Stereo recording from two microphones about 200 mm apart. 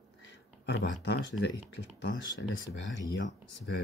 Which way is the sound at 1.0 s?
60° left (ahead or behind).